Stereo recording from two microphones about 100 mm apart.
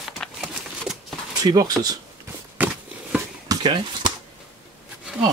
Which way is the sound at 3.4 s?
45° right (ahead or behind).